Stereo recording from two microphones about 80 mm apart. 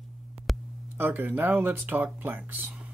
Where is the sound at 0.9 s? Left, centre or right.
Right.